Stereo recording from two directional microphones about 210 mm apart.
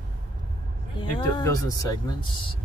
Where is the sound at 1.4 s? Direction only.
15° left (ahead or behind).